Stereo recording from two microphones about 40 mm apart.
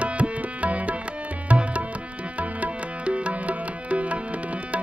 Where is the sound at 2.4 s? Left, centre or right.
Right.